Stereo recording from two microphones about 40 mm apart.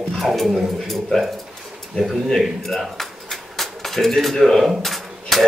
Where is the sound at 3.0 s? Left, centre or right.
Centre.